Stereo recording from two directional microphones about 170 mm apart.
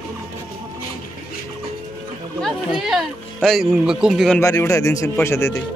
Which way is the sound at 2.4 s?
Centre (ahead or behind).